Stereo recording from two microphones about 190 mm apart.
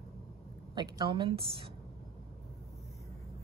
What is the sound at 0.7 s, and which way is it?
Speech, 25° right (ahead or behind).